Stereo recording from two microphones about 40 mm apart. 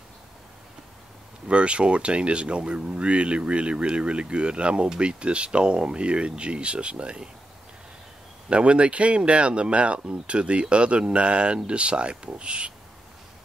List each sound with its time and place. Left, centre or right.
1.5 s speech: right
8.5 s speech: right